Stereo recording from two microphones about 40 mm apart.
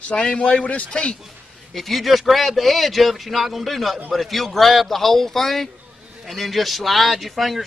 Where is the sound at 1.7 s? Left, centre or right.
Centre.